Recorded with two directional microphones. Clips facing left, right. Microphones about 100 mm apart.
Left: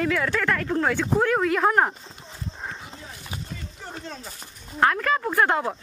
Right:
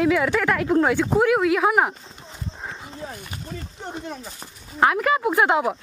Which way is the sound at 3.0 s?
50° right (ahead or behind).